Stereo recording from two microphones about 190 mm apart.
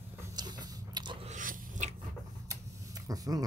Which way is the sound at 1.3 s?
40° right (ahead or behind).